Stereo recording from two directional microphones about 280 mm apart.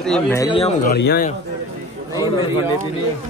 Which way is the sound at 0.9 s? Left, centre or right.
Left.